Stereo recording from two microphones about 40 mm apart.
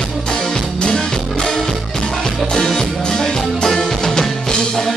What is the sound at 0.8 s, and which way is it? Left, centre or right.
Music, centre.